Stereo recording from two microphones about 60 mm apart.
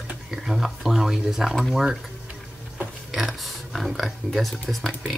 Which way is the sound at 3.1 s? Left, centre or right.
Centre.